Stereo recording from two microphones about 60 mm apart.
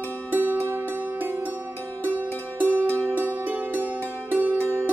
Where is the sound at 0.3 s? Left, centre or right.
Right.